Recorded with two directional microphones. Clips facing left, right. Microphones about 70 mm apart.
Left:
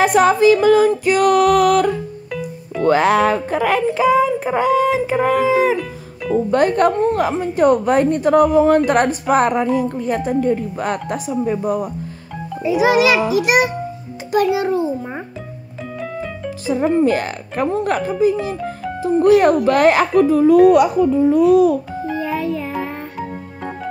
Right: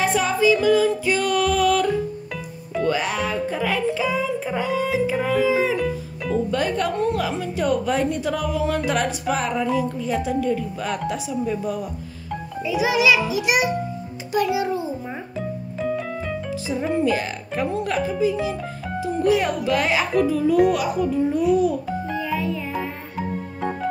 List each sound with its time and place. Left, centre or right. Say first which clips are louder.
0.0 s music: left 7 dB; left
2.8 s a woman's voice: left 9 dB; left
6.9 s a woman's voice: left 6 dB; left
15.9 s keyboard: left 2 dB; centre
17.0 s a woman's voice: left 5 dB; left
20.7 s speech: left 9 dB; left
22.0 s music: left 4 dB; centre